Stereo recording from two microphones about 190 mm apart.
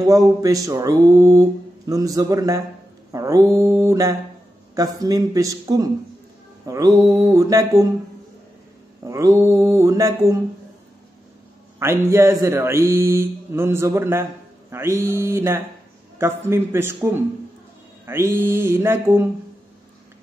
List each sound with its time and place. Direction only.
0.0 s a man's voice: 20° right (ahead or behind)
9.0 s speech: 15° right (ahead or behind)
11.8 s speech: 15° right (ahead or behind)